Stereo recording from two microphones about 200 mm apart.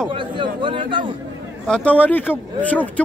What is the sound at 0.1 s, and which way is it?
Speech, 25° right (ahead or behind).